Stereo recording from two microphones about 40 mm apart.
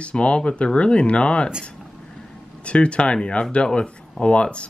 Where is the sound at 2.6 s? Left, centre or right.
Left.